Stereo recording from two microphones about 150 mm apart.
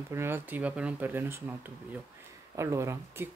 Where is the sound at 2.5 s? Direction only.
20° right (ahead or behind).